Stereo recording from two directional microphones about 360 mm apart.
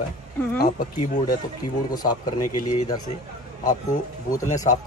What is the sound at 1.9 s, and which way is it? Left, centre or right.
Speech, centre.